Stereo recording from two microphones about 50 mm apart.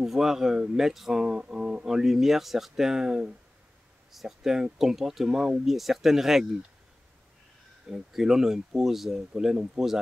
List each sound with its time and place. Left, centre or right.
0.0 s speech: centre
1.2 s speech: centre
1.9 s speech: centre
4.1 s speech: centre
7.9 s speech: centre